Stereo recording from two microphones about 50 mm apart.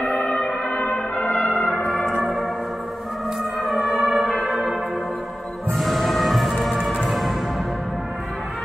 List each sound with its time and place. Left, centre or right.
0.0 s music: left
0.3 s music: left
0.7 s music: left
1.9 s music: centre
3.8 s music: centre